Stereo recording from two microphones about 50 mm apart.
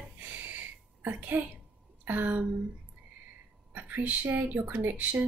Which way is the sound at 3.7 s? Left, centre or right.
Right.